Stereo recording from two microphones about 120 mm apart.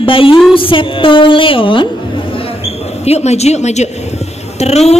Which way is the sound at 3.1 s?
65° left (ahead or behind).